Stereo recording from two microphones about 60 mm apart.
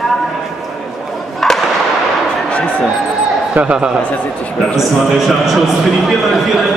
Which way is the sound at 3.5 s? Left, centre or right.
Centre.